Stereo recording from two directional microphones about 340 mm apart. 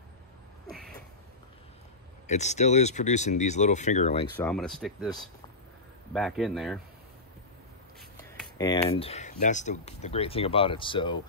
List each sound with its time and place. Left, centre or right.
2.2 s speech: centre
4.4 s speech: centre
6.1 s speech: centre
8.2 s speech: centre